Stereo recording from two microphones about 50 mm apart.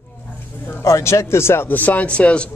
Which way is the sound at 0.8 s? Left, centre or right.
Left.